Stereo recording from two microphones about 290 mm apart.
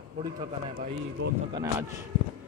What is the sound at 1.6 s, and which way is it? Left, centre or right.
Speech, centre.